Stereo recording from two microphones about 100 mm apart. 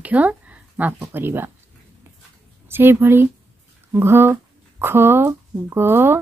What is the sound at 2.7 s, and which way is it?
Speech, 20° right (ahead or behind).